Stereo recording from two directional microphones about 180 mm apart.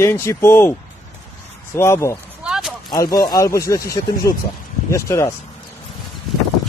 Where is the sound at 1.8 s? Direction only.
15° left (ahead or behind).